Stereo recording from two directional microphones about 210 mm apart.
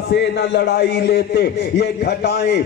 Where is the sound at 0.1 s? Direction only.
55° left (ahead or behind).